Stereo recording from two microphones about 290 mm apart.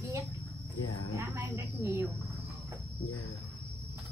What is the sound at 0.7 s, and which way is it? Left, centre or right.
Speech, left.